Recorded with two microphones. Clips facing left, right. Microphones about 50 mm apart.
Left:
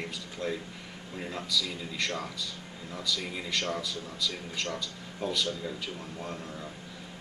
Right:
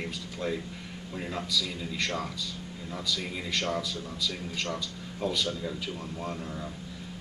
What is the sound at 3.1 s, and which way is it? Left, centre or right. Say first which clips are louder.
Speech: even; centre.